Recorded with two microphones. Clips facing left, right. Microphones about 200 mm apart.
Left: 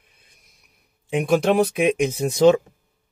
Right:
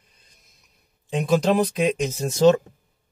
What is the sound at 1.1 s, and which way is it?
Speech, 10° left (ahead or behind).